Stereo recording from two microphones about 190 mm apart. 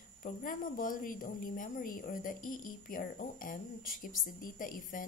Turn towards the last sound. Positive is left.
turn(degrees=45)  # may be behind; listen again after turning